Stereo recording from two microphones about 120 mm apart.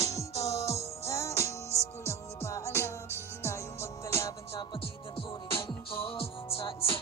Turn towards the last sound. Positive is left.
turn(degrees=50)  # may be behind; listen again after turning